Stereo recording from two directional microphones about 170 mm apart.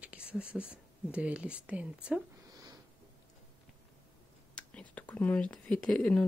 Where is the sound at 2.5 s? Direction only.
20° right (ahead or behind).